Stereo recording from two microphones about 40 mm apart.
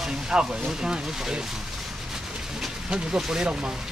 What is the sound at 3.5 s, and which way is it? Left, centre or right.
Speech, right.